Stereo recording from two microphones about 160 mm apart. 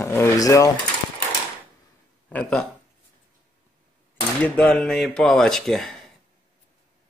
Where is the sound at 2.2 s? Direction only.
5° left (ahead or behind).